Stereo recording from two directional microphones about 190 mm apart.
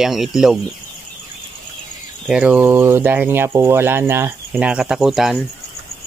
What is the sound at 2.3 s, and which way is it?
Speech, 5° right (ahead or behind).